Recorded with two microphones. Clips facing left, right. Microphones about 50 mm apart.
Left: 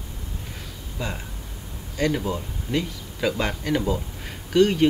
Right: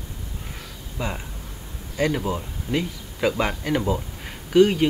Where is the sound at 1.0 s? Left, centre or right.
Centre.